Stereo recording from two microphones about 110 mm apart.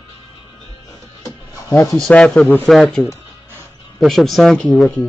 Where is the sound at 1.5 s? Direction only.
25° left (ahead or behind).